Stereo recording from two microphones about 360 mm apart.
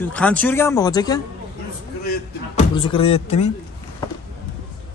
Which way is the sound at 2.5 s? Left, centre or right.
Centre.